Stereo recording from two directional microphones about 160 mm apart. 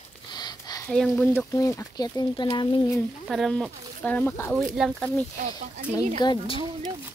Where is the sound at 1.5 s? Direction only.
20° left (ahead or behind).